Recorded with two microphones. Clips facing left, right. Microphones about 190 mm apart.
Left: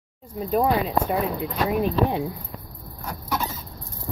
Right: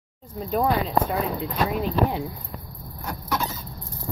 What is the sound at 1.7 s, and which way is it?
Speech, 20° left (ahead or behind).